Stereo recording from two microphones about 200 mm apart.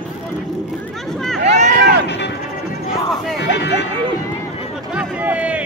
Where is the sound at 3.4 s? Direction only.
60° left (ahead or behind).